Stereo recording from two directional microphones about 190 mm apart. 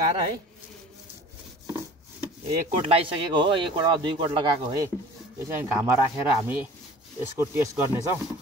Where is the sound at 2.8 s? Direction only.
30° right (ahead or behind).